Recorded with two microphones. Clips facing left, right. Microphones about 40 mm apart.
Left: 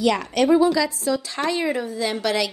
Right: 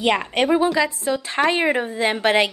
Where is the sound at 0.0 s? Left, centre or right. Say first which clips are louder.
Even; right.